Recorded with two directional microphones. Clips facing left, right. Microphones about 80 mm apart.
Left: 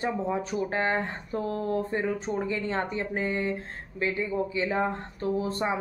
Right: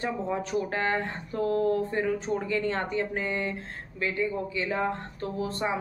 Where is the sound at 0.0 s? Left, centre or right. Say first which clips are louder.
Left 1 dB; centre.